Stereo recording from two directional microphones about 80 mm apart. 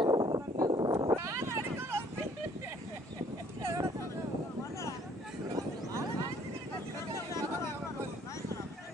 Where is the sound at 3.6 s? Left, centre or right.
Right.